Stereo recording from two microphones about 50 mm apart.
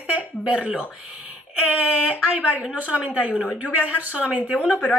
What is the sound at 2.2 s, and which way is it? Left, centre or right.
Speech, right.